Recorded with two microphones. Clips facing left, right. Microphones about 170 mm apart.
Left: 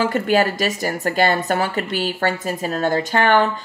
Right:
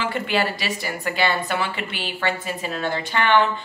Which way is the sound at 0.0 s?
45° left (ahead or behind).